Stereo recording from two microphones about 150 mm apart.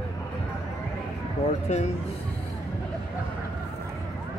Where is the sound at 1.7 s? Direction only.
50° left (ahead or behind).